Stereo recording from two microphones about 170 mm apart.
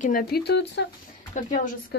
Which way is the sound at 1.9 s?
75° left (ahead or behind).